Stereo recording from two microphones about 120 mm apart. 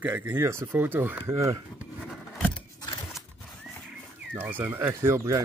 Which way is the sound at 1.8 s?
5° right (ahead or behind).